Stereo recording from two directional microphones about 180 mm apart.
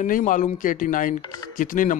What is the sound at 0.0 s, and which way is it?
Speech, 45° left (ahead or behind).